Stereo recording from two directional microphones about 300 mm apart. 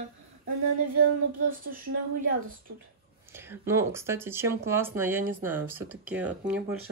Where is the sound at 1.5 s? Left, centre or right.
Right.